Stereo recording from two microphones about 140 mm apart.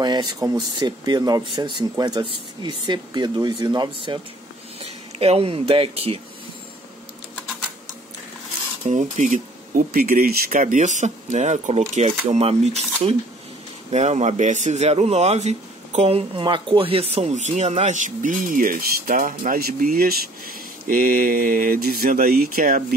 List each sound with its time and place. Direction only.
0.0 s speech: 30° right (ahead or behind)
5.2 s speech: 45° right (ahead or behind)
8.8 s a man's voice: 60° right (ahead or behind); by 22.9 s 85° right